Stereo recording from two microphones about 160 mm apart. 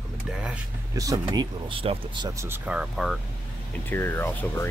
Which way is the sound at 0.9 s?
20° right (ahead or behind).